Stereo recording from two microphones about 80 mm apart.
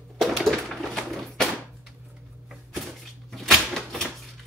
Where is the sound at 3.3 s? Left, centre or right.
Centre.